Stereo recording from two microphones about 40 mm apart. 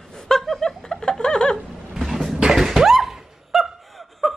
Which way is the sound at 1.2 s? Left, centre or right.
Centre.